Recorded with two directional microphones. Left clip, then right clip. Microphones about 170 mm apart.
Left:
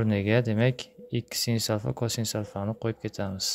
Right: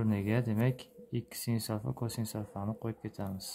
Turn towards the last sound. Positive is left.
turn(degrees=35)  # may be behind; listen again after turning